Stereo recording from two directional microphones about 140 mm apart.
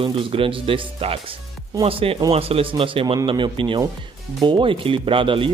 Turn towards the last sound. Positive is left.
turn(degrees=-40)  # may be behind; listen again after turning